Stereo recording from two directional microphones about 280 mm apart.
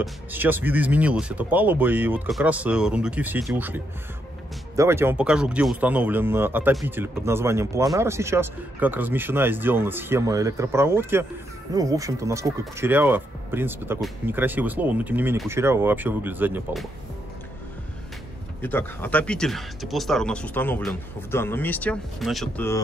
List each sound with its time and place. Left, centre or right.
0.0 s speech: centre
18.6 s speech: centre